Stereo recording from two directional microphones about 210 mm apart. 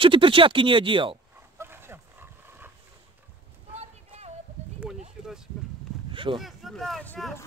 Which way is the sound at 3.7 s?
30° right (ahead or behind).